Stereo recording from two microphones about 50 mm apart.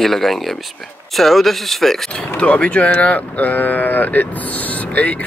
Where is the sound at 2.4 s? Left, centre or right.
Left.